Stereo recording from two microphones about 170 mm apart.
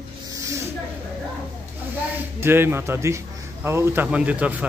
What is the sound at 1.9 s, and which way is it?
A man's voice, 15° right (ahead or behind).